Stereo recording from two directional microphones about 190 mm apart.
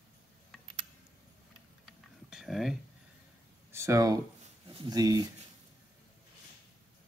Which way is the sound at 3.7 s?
15° right (ahead or behind).